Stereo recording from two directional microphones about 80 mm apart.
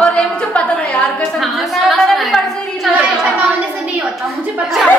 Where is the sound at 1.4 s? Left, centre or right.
Centre.